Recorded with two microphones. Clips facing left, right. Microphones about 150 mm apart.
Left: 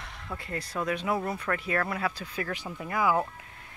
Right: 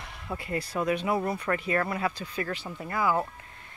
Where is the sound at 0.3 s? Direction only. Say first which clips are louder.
Right 4 dB; 10° right (ahead or behind); by 3.2 s 10° left (ahead or behind).